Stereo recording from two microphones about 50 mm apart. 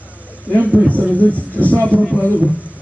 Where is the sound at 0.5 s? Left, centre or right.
Right.